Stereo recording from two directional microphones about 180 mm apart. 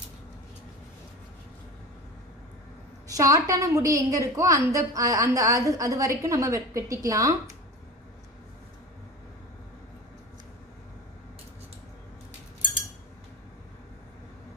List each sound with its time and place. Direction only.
3.1 s a woman's voice: 20° right (ahead or behind)